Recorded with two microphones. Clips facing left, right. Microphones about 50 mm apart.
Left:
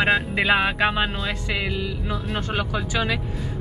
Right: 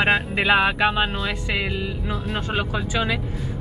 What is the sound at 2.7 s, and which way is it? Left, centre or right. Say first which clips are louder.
Speech: even; right.